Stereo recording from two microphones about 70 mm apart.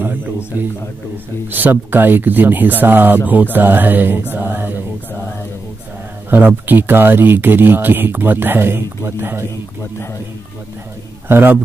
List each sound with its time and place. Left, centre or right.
0.5 s speech: right
4.3 s mantra: right
6.3 s speech: right
11.2 s speech: right